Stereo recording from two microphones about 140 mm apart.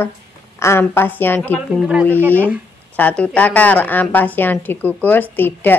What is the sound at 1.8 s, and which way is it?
Speech, 5° right (ahead or behind).